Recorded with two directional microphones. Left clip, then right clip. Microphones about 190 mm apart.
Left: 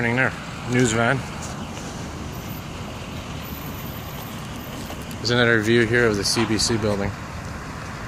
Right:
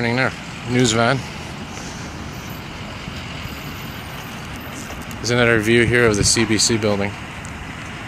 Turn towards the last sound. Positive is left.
turn(degrees=-20)  # may be behind; listen again after turning